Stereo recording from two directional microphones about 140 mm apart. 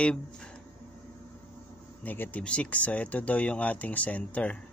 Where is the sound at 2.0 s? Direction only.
15° left (ahead or behind).